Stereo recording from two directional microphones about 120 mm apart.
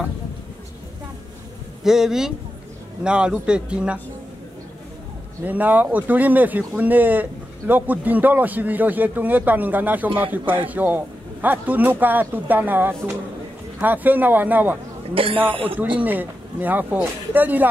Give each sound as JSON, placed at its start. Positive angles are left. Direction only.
{"t": 1.8, "sound": "speech", "side_deg": -5}
{"t": 5.4, "sound": "speech", "side_deg": -15}
{"t": 15.2, "sound": "speech", "side_deg": -50}
{"t": 16.0, "sound": "speech", "side_deg": -15}